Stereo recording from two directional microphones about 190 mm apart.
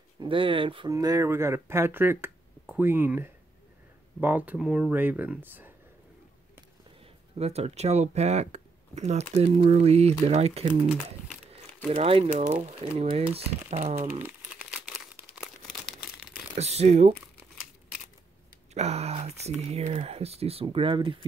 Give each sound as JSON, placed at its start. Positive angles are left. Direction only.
{"t": 0.2, "sound": "speech", "side_deg": -25}
{"t": 7.3, "sound": "speech", "side_deg": -35}
{"t": 11.9, "sound": "speech", "side_deg": -30}
{"t": 14.2, "sound": "crumpling", "side_deg": -5}
{"t": 16.5, "sound": "speech", "side_deg": -35}
{"t": 18.7, "sound": "speech", "side_deg": -35}